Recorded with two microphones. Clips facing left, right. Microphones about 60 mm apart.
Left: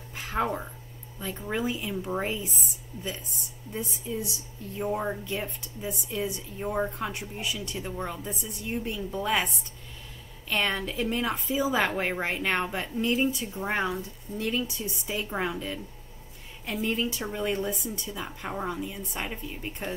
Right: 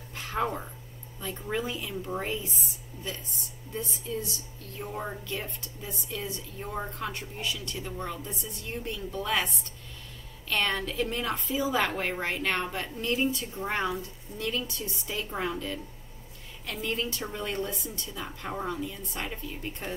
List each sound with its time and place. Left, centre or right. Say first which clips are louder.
0.1 s a sound: left 2 dB; centre
1.2 s speech: left 2 dB; centre
4.7 s speech: left 6 dB; centre
10.5 s speech: left 1 dB; centre
14.7 s speech: left 3 dB; centre
16.8 s speech: left 3 dB; centre